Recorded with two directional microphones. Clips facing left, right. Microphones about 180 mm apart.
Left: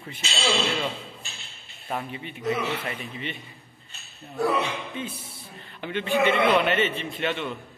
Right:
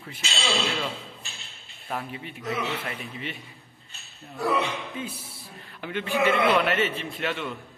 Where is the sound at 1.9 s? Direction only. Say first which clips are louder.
Left 1 dB; centre (ahead or behind).